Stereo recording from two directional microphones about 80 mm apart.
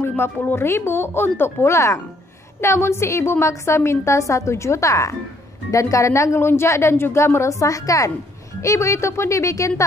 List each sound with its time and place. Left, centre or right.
0.2 s a woman's voice: left